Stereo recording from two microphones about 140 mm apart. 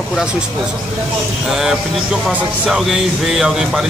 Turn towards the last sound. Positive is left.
turn(degrees=-5)  # may be behind; listen again after turning